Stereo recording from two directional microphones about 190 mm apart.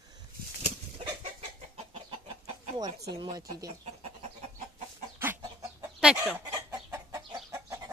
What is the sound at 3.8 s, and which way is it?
Chicken, 35° right (ahead or behind).